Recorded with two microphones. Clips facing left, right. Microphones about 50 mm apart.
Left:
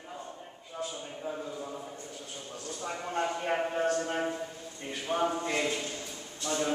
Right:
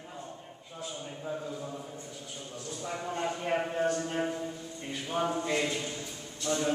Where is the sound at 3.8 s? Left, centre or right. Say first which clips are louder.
Left 1 dB; left.